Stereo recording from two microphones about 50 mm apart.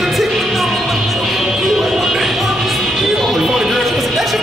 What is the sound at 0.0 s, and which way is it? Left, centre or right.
Music, centre.